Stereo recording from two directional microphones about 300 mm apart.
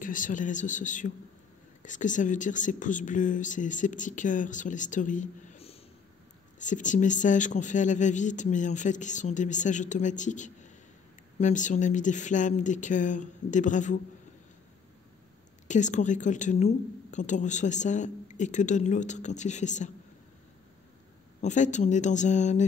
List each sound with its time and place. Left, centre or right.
0.0 s a woman's voice: left
15.7 s a woman's voice: left
21.4 s a woman's voice: left